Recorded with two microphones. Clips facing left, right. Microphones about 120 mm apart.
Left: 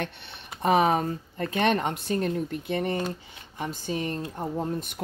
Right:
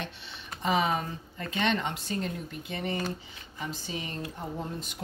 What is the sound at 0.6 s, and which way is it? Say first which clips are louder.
Speech: left 6 dB; 55° left (ahead or behind).